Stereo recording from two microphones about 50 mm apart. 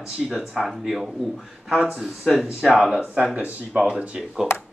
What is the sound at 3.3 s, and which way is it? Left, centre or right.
Speech, right.